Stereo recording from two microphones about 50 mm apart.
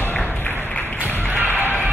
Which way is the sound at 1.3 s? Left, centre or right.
Right.